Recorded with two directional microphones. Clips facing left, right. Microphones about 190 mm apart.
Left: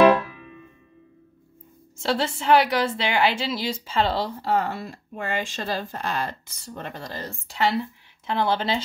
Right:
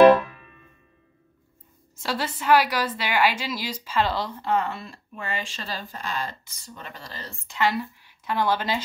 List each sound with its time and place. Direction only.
2.0 s a woman's voice: 25° left (ahead or behind)
5.1 s speech: 50° left (ahead or behind); by 8.8 s 25° left (ahead or behind)